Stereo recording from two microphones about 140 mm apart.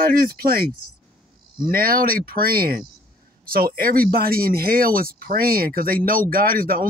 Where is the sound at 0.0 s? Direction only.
90° right.